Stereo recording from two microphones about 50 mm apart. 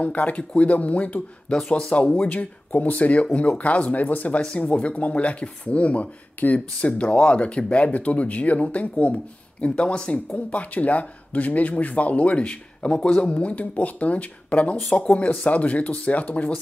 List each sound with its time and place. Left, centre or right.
0.0 s speech: left
10.1 s speech: left